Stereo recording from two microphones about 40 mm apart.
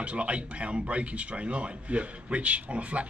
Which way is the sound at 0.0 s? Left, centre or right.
Right.